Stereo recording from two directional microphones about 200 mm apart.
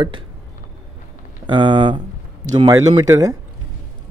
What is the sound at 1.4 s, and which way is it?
A man's voice, 25° right (ahead or behind).